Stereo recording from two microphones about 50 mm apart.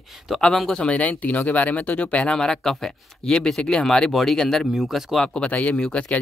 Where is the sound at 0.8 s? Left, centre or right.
Left.